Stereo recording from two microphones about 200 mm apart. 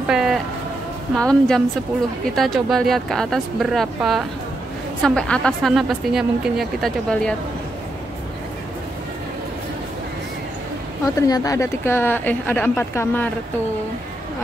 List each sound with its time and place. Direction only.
0.1 s train: centre (ahead or behind)
1.1 s speech: 5° left (ahead or behind)
11.1 s speech: 15° left (ahead or behind)